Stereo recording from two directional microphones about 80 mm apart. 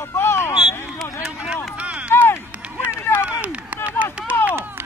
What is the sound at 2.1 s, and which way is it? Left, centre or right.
Run, left.